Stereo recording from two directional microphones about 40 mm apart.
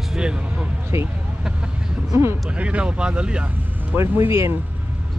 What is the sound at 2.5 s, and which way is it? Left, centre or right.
Speech, right.